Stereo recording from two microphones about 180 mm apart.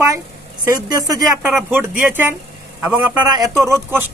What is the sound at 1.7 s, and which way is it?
A woman's voice, 10° right (ahead or behind).